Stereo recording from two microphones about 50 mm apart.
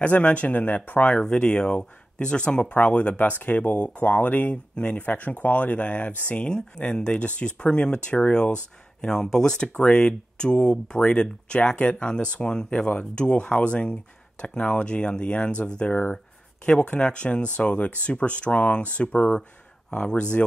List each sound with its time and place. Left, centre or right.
0.0 s speech: left
1.1 s speech: centre
15.9 s speech: left
16.6 s speech: left